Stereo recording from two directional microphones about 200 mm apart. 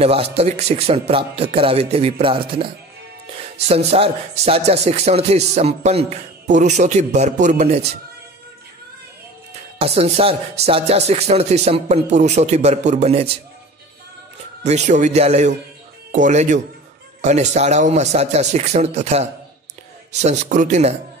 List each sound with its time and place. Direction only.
0.0 s a man's voice: 30° right (ahead or behind)
9.8 s a man's voice: 30° right (ahead or behind)
14.6 s a man's voice: 35° right (ahead or behind)